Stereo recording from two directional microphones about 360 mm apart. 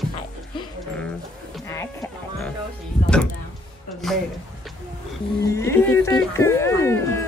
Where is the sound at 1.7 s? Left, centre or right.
Centre.